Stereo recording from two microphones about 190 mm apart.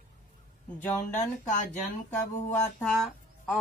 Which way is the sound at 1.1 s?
40° left (ahead or behind).